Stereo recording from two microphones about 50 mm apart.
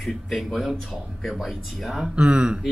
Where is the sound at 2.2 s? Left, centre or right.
Centre.